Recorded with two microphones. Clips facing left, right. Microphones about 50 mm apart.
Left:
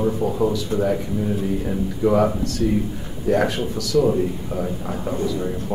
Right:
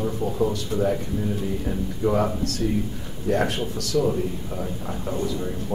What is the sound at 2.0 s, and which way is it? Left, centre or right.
Speech, centre.